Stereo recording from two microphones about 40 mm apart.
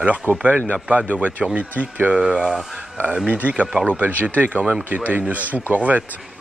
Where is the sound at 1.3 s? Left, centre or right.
Right.